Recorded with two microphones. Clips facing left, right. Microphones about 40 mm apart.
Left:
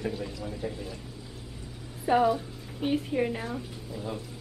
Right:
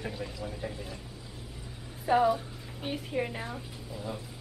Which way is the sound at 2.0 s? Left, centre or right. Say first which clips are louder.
Left 1 dB; centre.